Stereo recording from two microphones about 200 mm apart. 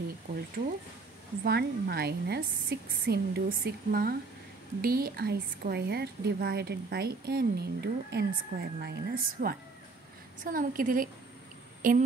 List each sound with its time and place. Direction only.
1.4 s a woman's voice: 55° right (ahead or behind)